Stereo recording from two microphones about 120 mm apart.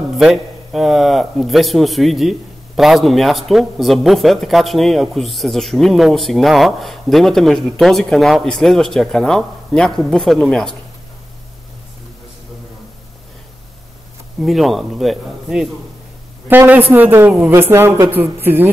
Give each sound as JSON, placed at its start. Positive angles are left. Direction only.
{"t": 0.2, "sound": "a man's voice", "side_deg": -5}
{"t": 14.4, "sound": "a man's voice", "side_deg": 0}
{"t": 16.4, "sound": "speech", "side_deg": -15}